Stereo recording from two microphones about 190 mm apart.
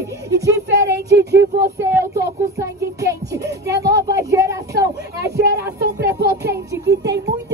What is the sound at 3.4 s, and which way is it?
Music, 60° right (ahead or behind).